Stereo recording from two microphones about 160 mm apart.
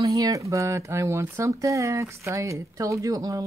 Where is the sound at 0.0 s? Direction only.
20° right (ahead or behind).